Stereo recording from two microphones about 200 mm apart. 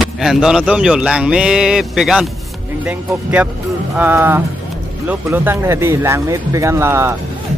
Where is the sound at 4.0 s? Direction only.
10° right (ahead or behind).